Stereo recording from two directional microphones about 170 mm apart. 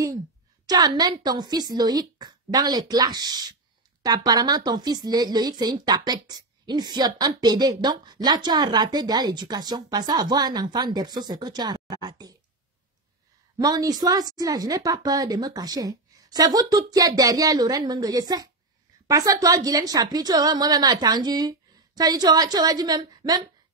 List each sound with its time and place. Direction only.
0.7 s speech: 25° right (ahead or behind)
13.6 s speech: 20° right (ahead or behind)